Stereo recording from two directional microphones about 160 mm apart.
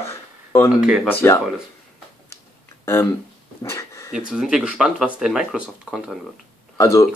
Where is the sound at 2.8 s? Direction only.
15° left (ahead or behind).